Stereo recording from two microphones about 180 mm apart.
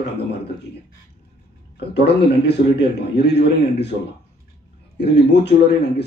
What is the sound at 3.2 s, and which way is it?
Speech, 70° left (ahead or behind).